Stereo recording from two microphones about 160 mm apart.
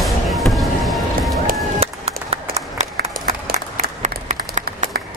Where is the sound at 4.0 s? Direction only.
50° right (ahead or behind).